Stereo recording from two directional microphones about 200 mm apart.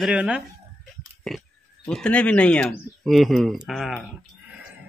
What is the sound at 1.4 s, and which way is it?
Speech, 5° left (ahead or behind).